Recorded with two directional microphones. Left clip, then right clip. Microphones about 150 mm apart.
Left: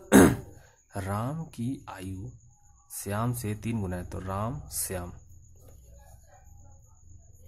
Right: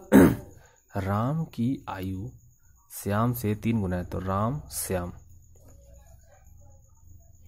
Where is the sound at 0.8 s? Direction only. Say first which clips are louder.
Right 4 dB; 25° right (ahead or behind).